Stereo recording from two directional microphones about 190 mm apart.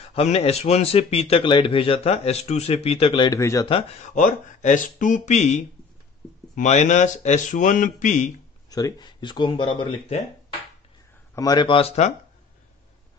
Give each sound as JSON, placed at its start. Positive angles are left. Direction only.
{"t": 0.1, "sound": "speech", "side_deg": 35}
{"t": 3.7, "sound": "speech", "side_deg": 40}
{"t": 8.6, "sound": "speech", "side_deg": 20}
{"t": 11.3, "sound": "speech", "side_deg": 20}